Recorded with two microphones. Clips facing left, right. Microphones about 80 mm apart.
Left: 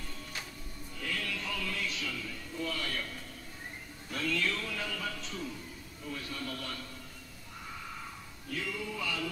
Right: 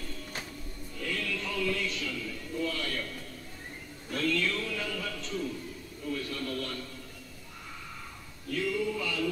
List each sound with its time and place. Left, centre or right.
0.9 s music: centre
4.1 s a sound: centre
6.1 s television: centre
8.5 s male singing: centre